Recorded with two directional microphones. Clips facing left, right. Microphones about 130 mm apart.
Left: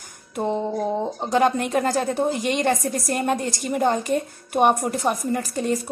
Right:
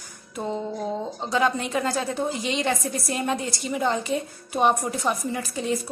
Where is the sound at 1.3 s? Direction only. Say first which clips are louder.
Left 4 dB; 50° left (ahead or behind).